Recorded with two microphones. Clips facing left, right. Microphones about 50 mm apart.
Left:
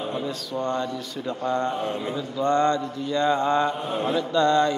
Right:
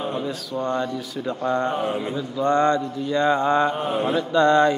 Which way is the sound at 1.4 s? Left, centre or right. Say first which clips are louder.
Right 2 dB; right.